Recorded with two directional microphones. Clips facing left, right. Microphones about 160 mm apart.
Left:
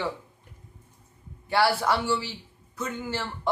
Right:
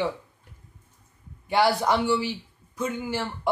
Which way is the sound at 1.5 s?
15° right (ahead or behind).